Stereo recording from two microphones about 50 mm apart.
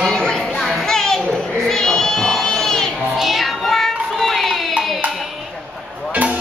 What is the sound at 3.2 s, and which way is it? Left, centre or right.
Child singing, centre.